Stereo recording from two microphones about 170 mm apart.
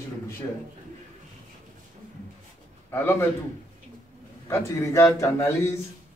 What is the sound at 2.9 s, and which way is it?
Speech, 15° left (ahead or behind).